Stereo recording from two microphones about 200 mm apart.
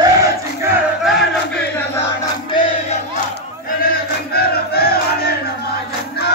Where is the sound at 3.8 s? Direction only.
50° left (ahead or behind).